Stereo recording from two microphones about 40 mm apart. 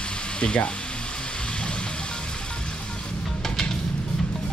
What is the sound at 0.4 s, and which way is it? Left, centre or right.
Speech, left.